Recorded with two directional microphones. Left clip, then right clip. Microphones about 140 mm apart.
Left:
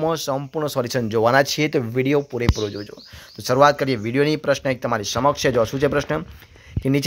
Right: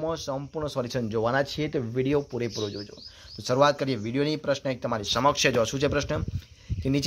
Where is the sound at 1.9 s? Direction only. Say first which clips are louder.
Left 6 dB; 10° left (ahead or behind).